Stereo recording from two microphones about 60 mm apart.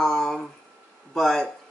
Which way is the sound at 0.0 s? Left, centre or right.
Centre.